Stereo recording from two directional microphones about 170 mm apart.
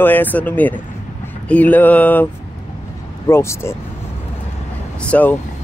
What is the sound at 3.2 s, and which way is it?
Speech, 15° left (ahead or behind).